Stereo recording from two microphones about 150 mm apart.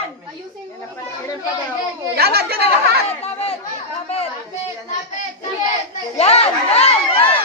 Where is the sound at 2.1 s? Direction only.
90° right.